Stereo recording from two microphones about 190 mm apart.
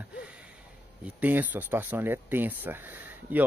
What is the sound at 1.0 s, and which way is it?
A man's voice, 10° right (ahead or behind).